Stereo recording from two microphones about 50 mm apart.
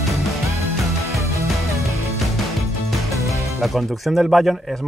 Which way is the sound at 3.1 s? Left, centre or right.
Right.